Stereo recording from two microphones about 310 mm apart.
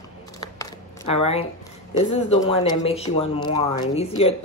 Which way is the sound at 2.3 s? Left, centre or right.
Centre.